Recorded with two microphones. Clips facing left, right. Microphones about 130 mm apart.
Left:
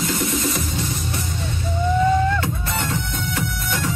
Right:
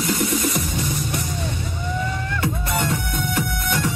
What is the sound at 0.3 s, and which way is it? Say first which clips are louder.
Music: right 1 dB; 55° right (ahead or behind).